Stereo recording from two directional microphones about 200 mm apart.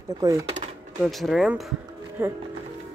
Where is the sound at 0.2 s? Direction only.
15° right (ahead or behind).